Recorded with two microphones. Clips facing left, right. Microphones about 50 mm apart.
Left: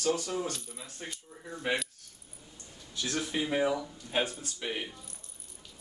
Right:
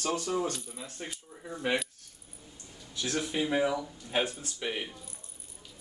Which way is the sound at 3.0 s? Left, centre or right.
Right.